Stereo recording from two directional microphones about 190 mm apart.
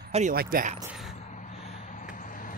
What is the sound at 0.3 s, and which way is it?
Speech, 50° right (ahead or behind).